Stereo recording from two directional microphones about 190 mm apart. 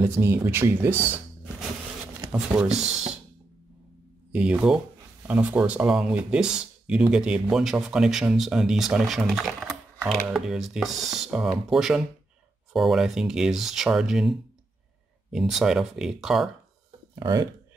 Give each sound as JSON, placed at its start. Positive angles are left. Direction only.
{"t": 0.0, "sound": "speech", "side_deg": -15}
{"t": 2.3, "sound": "speech", "side_deg": -5}
{"t": 2.7, "sound": "speech", "side_deg": -35}
{"t": 4.3, "sound": "speech", "side_deg": -5}
{"t": 15.3, "sound": "speech", "side_deg": 0}
{"t": 17.1, "sound": "speech", "side_deg": -20}